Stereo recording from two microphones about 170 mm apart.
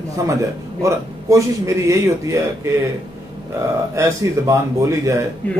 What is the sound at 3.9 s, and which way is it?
Speech, 20° right (ahead or behind).